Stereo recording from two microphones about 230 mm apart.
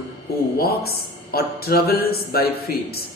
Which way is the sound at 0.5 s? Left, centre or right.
Left.